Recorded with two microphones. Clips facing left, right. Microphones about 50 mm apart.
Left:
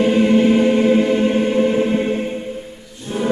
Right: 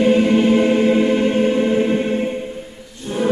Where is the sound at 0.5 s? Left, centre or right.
Centre.